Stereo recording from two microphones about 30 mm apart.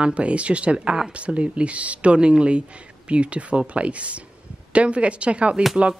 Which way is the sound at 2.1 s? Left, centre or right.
Right.